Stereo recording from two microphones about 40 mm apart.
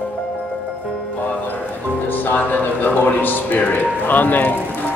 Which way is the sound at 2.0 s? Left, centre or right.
Left.